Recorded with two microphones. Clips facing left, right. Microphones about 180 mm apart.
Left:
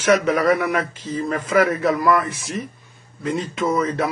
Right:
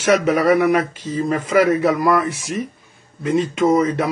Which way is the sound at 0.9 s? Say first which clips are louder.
Right 3 dB; 25° right (ahead or behind).